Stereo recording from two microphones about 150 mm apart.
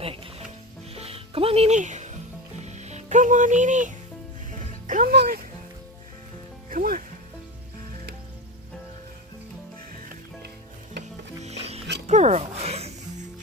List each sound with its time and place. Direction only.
0.0 s music: 35° right (ahead or behind)
1.8 s music: 55° right (ahead or behind); by 5.2 s 70° right (ahead or behind)
6.7 s speech: 65° right (ahead or behind)
11.4 s music: 45° right (ahead or behind)